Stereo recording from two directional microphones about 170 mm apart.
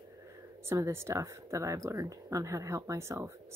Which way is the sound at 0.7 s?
15° right (ahead or behind).